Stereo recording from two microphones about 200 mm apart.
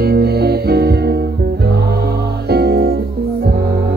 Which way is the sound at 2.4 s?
55° right (ahead or behind).